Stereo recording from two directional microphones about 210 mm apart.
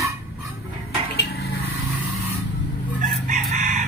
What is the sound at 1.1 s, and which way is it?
Dishes, 50° left (ahead or behind).